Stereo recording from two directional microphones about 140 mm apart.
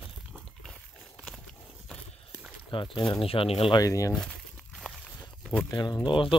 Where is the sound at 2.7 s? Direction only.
35° left (ahead or behind).